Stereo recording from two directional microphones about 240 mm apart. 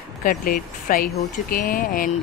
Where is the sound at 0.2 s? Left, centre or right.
Left.